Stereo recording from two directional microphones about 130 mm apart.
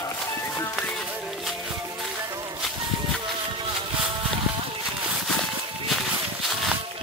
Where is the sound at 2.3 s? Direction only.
30° right (ahead or behind).